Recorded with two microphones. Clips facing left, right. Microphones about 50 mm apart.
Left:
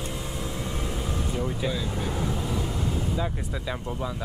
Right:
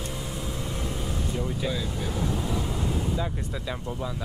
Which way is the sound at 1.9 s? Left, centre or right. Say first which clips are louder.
Even; centre.